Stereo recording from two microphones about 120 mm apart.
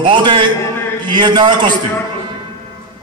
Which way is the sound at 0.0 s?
40° right (ahead or behind).